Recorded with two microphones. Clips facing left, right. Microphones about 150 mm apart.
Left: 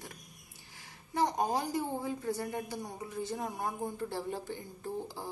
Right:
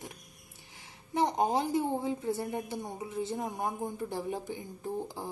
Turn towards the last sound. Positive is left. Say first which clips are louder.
# right 3 dB
turn(degrees=-20)  # may be behind; listen again after turning